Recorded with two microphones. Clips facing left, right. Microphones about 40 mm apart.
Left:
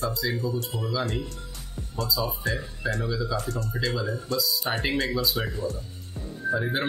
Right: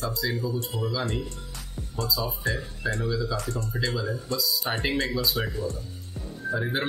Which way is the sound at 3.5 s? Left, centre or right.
Left.